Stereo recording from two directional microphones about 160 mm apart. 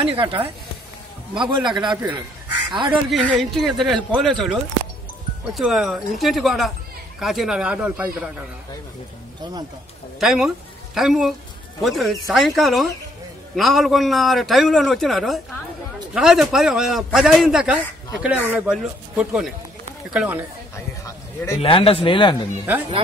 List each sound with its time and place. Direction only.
0.1 s a man's voice: 35° right (ahead or behind)
2.9 s a man's voice: 5° right (ahead or behind)
9.4 s a man's voice: 25° right (ahead or behind)
10.2 s a man's voice: centre (ahead or behind)
21.5 s speech: 35° left (ahead or behind)